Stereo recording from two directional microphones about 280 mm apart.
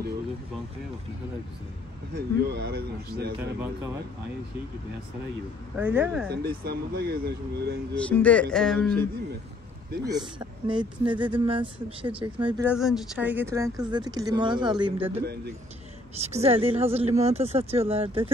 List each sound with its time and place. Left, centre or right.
2.1 s speech: right
3.3 s speech: centre
5.8 s speech: centre
6.2 s speech: right
7.9 s speech: centre
10.0 s speech: centre
12.6 s speech: centre